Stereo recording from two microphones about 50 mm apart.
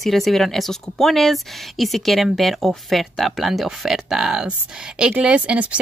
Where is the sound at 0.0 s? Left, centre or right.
Centre.